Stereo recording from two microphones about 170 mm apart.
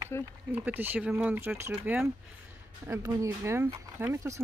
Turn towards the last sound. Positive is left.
turn(degrees=-15)  # may be behind; listen again after turning